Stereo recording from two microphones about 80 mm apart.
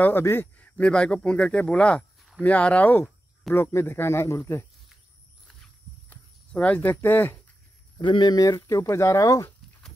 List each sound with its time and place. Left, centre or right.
0.2 s speech: left
3.5 s speech: left
6.0 s a sound: centre
8.0 s speech: left
8.5 s speech: left